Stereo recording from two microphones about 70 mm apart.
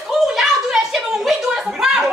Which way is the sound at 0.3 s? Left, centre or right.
Centre.